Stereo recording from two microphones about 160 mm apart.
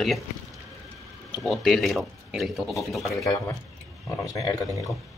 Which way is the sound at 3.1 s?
20° left (ahead or behind).